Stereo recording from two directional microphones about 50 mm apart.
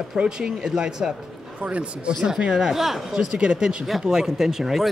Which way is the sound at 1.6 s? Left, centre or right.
Right.